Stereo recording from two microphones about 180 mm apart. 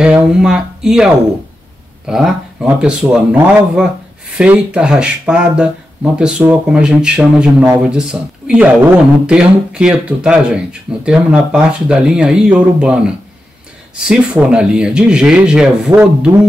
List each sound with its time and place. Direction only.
0.0 s speech: 5° right (ahead or behind)